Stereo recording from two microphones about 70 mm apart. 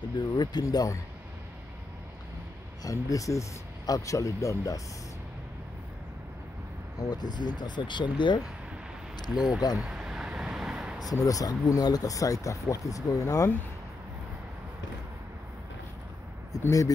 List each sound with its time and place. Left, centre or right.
0.2 s speech: left
2.8 s speech: left
7.0 s speech: left
9.3 s speech: centre
9.8 s vehicle: centre
11.1 s speech: left
16.5 s a sound: left